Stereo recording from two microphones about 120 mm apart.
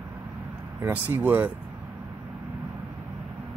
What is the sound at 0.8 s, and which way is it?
Speech, 15° right (ahead or behind).